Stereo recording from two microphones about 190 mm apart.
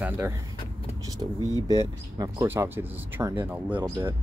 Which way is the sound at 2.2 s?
15° right (ahead or behind).